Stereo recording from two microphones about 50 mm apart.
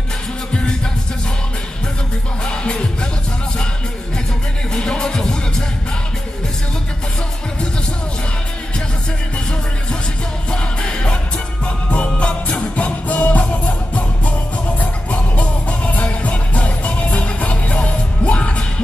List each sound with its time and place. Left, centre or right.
0.5 s music: centre
2.4 s music: centre
4.7 s music: centre
10.5 s music: centre